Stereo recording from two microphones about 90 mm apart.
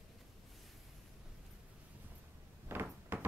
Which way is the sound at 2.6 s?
25° right (ahead or behind).